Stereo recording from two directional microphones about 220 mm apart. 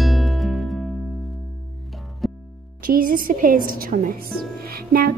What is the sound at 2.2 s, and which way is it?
Music, centre (ahead or behind).